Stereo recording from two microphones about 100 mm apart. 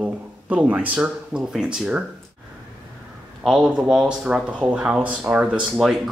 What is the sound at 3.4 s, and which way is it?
A man's voice, centre (ahead or behind).